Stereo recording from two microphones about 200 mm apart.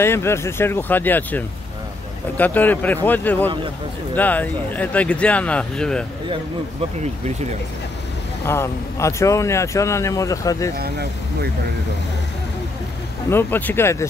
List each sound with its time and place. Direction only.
0.0 s speech: 10° left (ahead or behind)
7.0 s speech: 35° right (ahead or behind)
8.5 s speech: 15° left (ahead or behind)
13.3 s speech: 10° left (ahead or behind)